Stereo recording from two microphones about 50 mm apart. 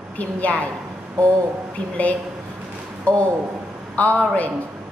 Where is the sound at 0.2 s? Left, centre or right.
Left.